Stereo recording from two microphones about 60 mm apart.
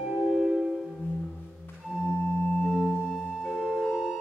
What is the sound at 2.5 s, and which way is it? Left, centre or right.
Singing bowl, centre.